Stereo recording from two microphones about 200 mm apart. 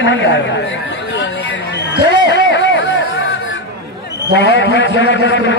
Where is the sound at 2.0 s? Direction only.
65° left (ahead or behind).